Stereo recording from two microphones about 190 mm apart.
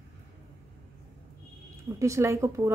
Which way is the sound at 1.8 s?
15° right (ahead or behind).